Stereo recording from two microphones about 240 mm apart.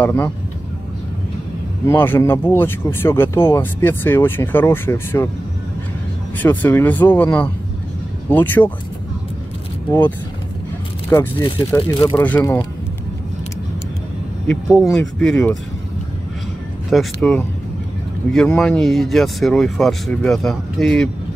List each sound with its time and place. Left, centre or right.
0.0 s speech: centre
1.9 s speech: centre
6.3 s speech: centre
9.8 s speech: centre
14.5 s speech: centre
16.9 s speech: centre